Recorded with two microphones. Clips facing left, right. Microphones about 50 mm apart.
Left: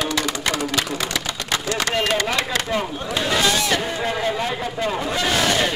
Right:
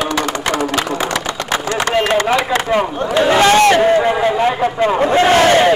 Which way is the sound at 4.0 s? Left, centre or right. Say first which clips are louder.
Right 9 dB; right.